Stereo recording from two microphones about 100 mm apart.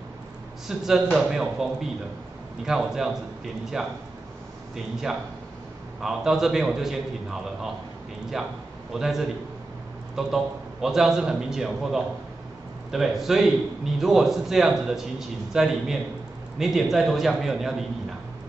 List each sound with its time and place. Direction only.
0.7 s a man's voice: 5° right (ahead or behind)
5.9 s a man's voice: 5° right (ahead or behind)